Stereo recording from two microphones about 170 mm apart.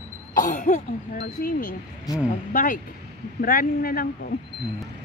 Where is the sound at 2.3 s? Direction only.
50° left (ahead or behind).